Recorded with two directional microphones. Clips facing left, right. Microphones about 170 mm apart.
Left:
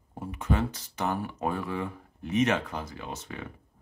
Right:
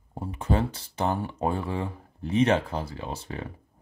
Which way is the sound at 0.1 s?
30° right (ahead or behind).